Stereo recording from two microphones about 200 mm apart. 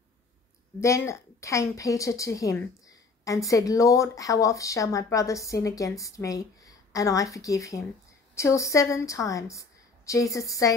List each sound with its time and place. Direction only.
0.7 s speech: 15° left (ahead or behind)